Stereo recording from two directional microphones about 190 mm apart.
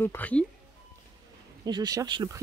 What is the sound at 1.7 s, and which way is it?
Speech, 20° right (ahead or behind).